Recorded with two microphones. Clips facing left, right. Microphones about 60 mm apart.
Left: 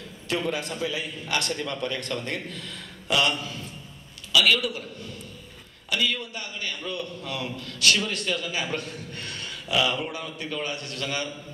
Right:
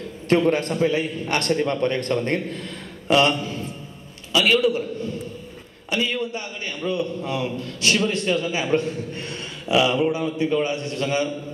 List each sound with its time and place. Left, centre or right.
0.3 s a man's voice: right